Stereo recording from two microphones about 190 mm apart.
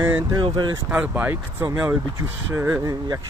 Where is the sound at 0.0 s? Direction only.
10° right (ahead or behind).